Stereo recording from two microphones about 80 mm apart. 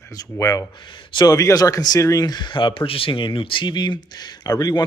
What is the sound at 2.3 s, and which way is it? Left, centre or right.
Speech, left.